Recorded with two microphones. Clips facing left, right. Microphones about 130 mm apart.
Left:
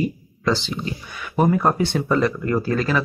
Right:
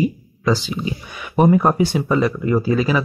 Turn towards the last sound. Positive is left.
turn(degrees=-10)  # may be behind; listen again after turning